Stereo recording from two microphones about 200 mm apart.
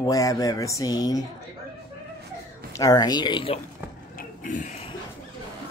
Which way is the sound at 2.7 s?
20° left (ahead or behind).